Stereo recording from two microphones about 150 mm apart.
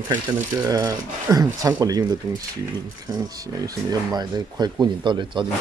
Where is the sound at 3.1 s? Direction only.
25° right (ahead or behind).